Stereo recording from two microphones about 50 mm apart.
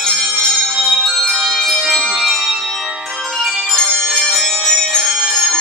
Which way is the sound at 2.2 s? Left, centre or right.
Centre.